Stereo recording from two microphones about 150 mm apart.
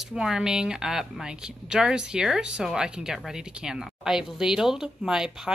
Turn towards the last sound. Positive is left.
turn(degrees=-5)  # may be behind; listen again after turning